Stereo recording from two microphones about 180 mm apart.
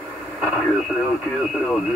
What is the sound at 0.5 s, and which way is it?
Speech, centre (ahead or behind).